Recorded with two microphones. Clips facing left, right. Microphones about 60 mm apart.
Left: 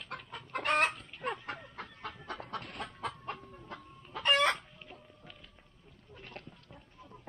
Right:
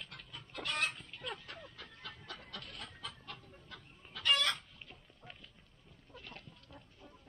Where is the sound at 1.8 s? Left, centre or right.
Left.